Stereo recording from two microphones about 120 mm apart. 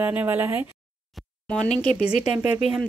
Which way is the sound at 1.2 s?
Centre (ahead or behind).